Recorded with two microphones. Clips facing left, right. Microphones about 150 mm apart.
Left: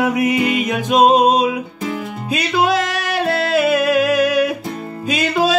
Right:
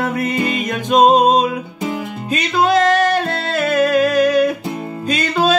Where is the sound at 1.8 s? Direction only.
15° right (ahead or behind).